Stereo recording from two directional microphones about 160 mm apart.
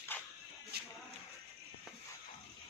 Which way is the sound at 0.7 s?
90° right.